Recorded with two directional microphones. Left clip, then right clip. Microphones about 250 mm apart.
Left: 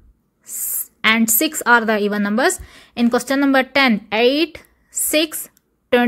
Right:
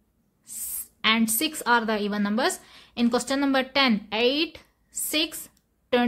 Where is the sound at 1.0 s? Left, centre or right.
Centre.